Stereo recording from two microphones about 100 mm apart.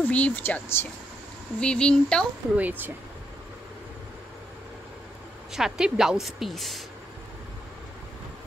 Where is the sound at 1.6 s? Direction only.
10° left (ahead or behind).